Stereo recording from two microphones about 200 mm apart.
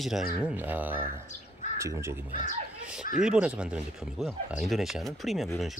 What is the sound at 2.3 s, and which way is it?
Speech, 40° left (ahead or behind).